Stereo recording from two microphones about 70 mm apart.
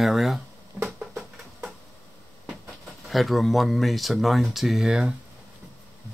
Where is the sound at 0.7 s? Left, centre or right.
Centre.